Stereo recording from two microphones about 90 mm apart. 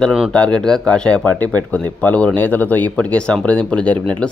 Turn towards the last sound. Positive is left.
turn(degrees=15)  # may be behind; listen again after turning